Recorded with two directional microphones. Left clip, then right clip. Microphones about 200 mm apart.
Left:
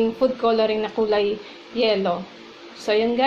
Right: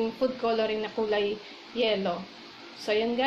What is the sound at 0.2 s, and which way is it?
Speech, 15° left (ahead or behind).